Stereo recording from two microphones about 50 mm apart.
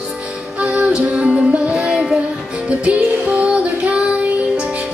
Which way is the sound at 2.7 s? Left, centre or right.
Right.